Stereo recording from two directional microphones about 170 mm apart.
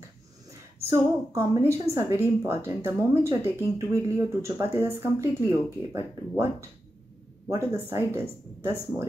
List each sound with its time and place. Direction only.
0.5 s a woman's voice: 15° right (ahead or behind)